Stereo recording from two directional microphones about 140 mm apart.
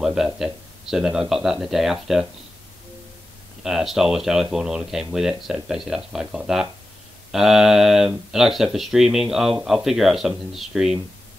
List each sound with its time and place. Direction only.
0.0 s speech: 5° right (ahead or behind)
3.6 s speech: 5° right (ahead or behind)